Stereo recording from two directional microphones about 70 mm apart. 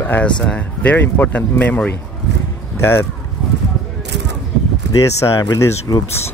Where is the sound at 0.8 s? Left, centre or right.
Left.